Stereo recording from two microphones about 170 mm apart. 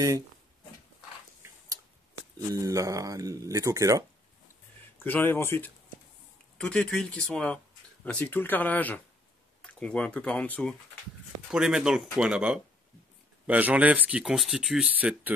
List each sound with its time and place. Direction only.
1.4 s speech: 20° right (ahead or behind)
5.0 s speech: 10° left (ahead or behind)
11.5 s speech: 5° right (ahead or behind)